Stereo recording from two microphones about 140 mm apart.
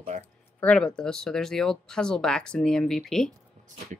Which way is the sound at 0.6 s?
5° left (ahead or behind).